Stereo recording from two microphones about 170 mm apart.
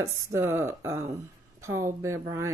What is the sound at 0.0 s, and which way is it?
Speech, 15° right (ahead or behind).